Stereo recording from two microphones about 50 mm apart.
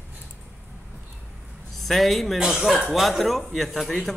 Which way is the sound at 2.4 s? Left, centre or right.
Centre.